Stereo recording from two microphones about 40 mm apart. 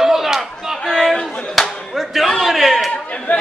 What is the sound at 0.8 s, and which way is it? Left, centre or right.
Chatter, centre.